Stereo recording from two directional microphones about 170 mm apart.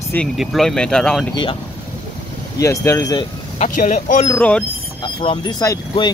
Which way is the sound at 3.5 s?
50° left (ahead or behind).